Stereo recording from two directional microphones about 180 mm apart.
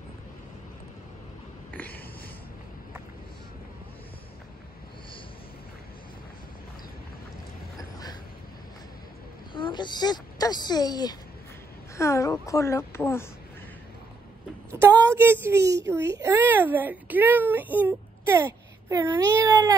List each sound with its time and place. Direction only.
1.7 s a sound: 10° left (ahead or behind)
9.5 s a woman's voice: 25° left (ahead or behind)
14.7 s a child's voice: 15° right (ahead or behind)